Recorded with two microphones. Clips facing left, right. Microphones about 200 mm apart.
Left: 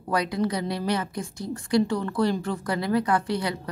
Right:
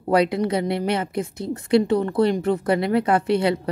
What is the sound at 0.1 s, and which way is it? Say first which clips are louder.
A woman's voice: right 6 dB; 25° right (ahead or behind).